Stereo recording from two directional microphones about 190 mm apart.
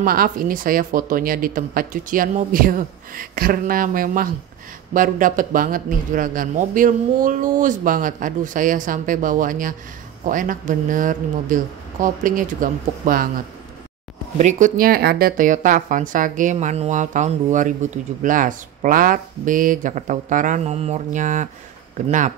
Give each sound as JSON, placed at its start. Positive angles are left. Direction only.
{"t": 0.0, "sound": "a woman's voice", "side_deg": -50}
{"t": 14.4, "sound": "a woman's voice", "side_deg": -40}